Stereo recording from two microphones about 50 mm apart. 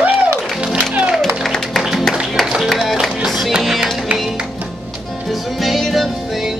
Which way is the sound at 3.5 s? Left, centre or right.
Centre.